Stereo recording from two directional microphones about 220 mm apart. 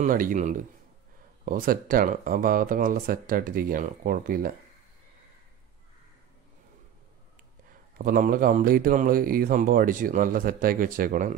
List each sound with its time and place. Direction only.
0.0 s a man's voice: 40° right (ahead or behind)
8.0 s a man's voice: 40° right (ahead or behind)